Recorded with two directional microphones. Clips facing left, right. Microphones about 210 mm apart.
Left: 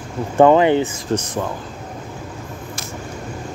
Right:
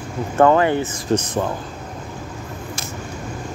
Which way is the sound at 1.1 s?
15° right (ahead or behind).